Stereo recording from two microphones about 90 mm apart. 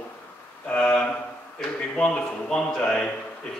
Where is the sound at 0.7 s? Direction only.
15° left (ahead or behind).